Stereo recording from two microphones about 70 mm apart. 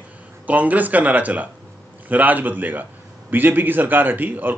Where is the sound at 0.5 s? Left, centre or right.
Right.